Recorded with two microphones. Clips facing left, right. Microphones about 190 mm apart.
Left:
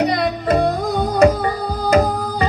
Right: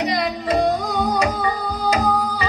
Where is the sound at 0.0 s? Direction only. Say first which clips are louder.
Left 4 dB; 55° left (ahead or behind).